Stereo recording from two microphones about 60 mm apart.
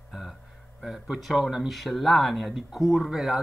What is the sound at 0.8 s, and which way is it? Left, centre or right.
Speech, centre.